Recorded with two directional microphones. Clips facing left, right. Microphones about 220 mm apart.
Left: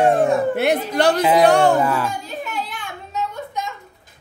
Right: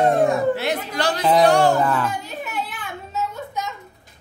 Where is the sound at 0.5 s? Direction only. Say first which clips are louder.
Left 6 dB; 55° left (ahead or behind).